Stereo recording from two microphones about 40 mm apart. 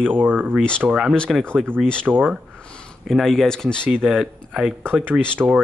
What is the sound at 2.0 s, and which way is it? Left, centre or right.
Speech, right.